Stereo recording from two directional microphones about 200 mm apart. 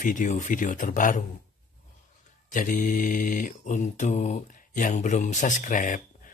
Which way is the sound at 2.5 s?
40° left (ahead or behind).